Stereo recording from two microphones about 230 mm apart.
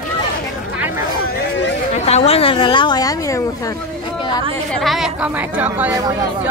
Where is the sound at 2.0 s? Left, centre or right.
Left.